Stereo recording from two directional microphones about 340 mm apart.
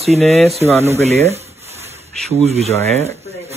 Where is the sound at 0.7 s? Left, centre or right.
Centre.